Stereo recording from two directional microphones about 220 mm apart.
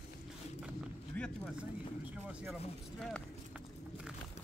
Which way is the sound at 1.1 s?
5° left (ahead or behind).